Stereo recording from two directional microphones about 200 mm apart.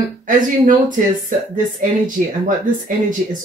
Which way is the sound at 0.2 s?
40° right (ahead or behind).